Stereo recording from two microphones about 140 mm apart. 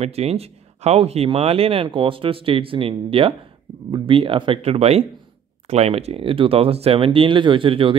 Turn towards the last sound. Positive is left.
turn(degrees=-40)  # may be behind; listen again after turning